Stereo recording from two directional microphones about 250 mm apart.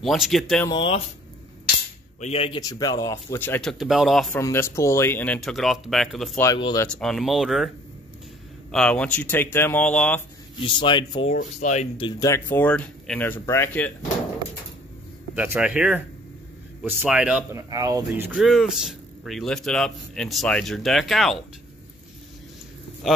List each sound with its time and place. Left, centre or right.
0.0 s speech: centre
0.7 s speech: centre
2.1 s speech: left; by 6.4 s centre
6.4 s speech: centre
6.9 s speech: centre
8.7 s speech: centre
10.6 s speech: centre
15.3 s speech: centre